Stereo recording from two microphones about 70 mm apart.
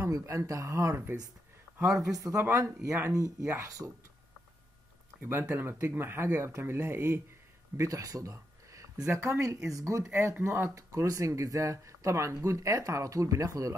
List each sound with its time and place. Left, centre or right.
0.0 s speech: right
2.0 s speech: right
5.3 s speech: right
7.7 s a sound: right
9.1 s speech: right